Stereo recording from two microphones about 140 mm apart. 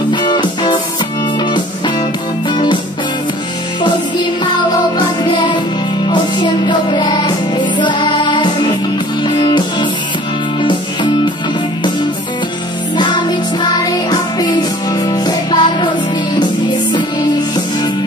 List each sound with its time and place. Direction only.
0.1 s music: 35° left (ahead or behind)
2.5 s music: 35° left (ahead or behind)
4.9 s music: 35° left (ahead or behind)
12.9 s music: 30° left (ahead or behind)
15.0 s music: 30° left (ahead or behind)